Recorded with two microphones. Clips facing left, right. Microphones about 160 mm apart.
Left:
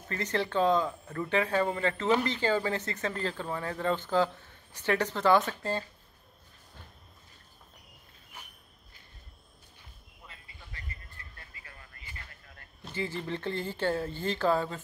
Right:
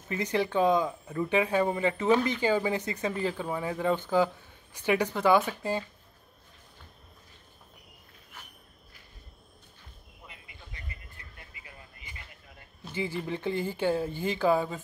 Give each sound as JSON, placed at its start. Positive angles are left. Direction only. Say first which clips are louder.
{"t": 0.1, "sound": "speech", "louder": "right 3 dB", "side_deg": -15}
{"t": 10.2, "sound": "vehicle", "louder": "right 2 dB", "side_deg": -15}
{"t": 12.9, "sound": "speech", "louder": "right 2 dB", "side_deg": -15}